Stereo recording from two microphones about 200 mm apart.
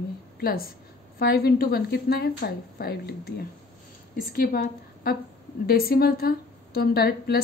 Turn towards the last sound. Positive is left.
turn(degrees=50)  # may be behind; listen again after turning